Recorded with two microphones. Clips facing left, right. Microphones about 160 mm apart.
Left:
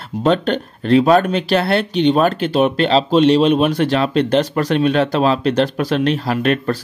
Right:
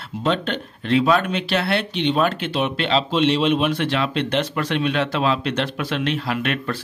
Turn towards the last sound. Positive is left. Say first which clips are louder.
# left 7 dB
turn(degrees=40)  # may be behind; listen again after turning